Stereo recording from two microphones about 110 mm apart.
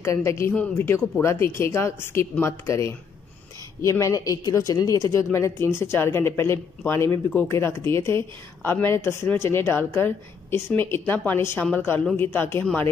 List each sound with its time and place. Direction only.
0.0 s a woman's voice: 25° left (ahead or behind)